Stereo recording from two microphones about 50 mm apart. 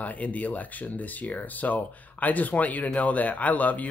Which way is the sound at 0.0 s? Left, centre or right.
Left.